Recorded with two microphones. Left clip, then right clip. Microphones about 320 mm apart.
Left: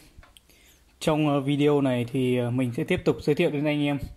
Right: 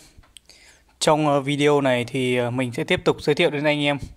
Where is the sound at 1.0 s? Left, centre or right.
Right.